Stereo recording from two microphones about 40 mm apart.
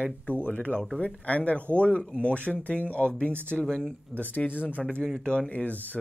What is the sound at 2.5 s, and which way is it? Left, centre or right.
Speech, left.